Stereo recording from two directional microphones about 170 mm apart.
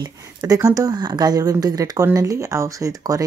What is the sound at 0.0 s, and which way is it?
A woman's voice, 20° right (ahead or behind).